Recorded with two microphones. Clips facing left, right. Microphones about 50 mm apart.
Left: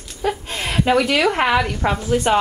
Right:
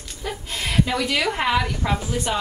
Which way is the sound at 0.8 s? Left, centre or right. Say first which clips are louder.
Left 7 dB; left.